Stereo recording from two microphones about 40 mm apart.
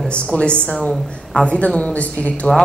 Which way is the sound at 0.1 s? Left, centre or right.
Left.